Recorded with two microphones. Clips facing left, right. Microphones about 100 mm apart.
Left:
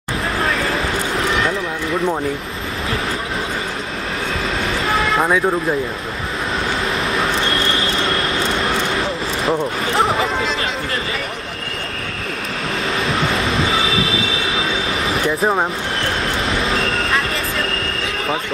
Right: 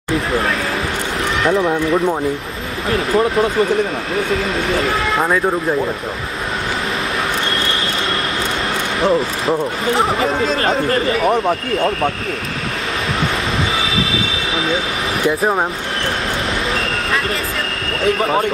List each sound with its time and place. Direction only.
5.1 s speech: centre (ahead or behind)
9.5 s speech: centre (ahead or behind)
10.2 s speech: 40° right (ahead or behind)
15.2 s speech: 5° right (ahead or behind)